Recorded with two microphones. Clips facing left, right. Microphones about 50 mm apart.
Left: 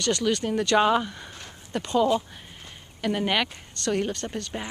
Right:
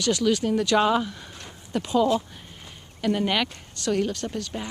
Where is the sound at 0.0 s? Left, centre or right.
Centre.